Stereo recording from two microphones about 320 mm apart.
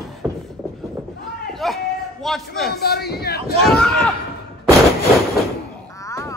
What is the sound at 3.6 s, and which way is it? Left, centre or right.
Speech, centre.